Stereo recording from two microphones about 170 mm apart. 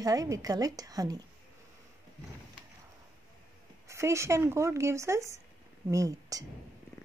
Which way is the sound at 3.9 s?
15° right (ahead or behind).